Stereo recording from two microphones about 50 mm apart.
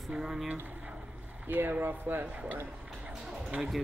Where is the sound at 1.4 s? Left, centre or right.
Right.